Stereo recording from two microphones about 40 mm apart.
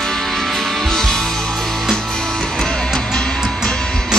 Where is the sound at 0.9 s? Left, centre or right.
Centre.